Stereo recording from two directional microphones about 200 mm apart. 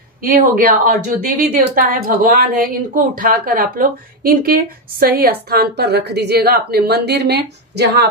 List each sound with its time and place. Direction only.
0.2 s a woman's voice: 45° right (ahead or behind)